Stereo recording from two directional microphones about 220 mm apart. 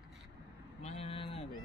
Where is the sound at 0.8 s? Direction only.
30° left (ahead or behind).